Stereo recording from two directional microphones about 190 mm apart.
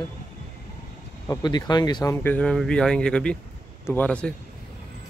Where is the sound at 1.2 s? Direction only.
20° left (ahead or behind).